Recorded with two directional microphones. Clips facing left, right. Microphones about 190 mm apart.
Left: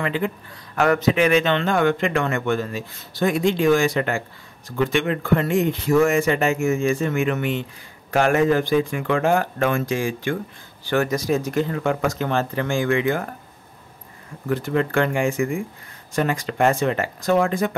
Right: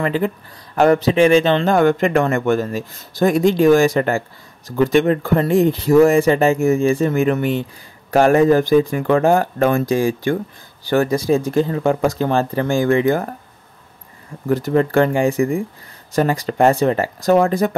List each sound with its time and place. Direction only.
0.0 s a man's voice: 40° right (ahead or behind)
14.5 s a man's voice: 40° right (ahead or behind)